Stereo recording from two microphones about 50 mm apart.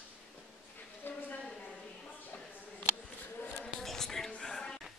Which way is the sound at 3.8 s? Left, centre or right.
Centre.